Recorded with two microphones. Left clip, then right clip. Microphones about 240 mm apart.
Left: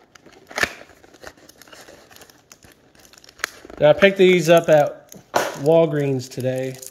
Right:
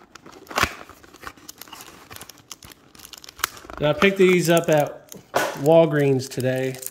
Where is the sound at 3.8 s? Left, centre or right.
Centre.